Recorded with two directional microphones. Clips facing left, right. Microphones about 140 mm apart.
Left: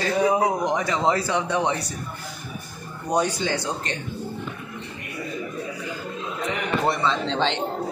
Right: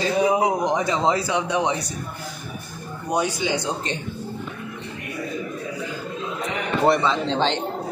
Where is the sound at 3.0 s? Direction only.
5° right (ahead or behind).